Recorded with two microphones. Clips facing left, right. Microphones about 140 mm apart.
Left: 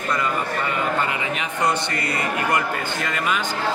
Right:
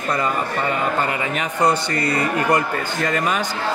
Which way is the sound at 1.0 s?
40° right (ahead or behind).